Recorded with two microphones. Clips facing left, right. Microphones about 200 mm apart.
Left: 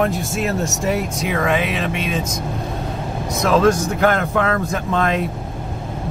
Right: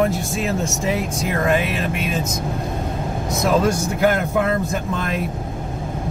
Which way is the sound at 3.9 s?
5° right (ahead or behind).